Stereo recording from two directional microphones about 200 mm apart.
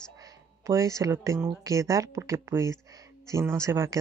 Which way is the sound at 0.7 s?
15° right (ahead or behind).